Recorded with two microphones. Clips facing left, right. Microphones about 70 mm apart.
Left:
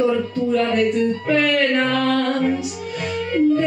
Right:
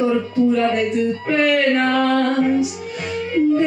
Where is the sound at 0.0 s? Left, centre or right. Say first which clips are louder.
Right 2 dB; centre.